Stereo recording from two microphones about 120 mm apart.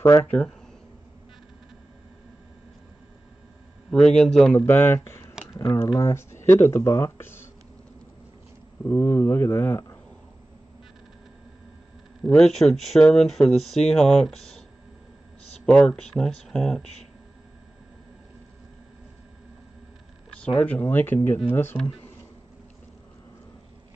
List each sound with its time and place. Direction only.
0.0 s speech: 25° left (ahead or behind)
0.3 s speech: 5° left (ahead or behind)
3.9 s speech: 5° left (ahead or behind)
4.6 s speech: 20° left (ahead or behind)
8.8 s speech: 20° left (ahead or behind)
12.2 s speech: centre (ahead or behind)
15.6 s speech: 10° left (ahead or behind)
20.3 s speech: 10° left (ahead or behind)